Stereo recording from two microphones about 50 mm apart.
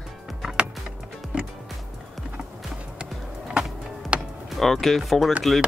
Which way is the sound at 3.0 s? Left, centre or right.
Centre.